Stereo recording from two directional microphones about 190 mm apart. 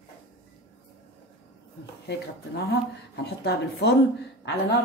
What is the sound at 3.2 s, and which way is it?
Speech, 60° left (ahead or behind).